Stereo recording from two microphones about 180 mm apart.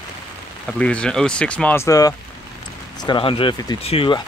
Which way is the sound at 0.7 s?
5° left (ahead or behind).